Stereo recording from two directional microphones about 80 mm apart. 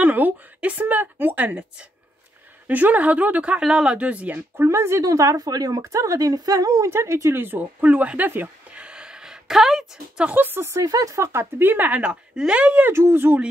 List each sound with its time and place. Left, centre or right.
0.0 s speech: right
4.6 s speech: right
7.8 s speech: centre
8.3 s a sound: right
10.3 s speech: right
12.9 s speech: right